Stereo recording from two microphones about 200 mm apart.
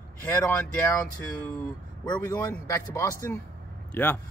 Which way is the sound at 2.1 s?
15° left (ahead or behind).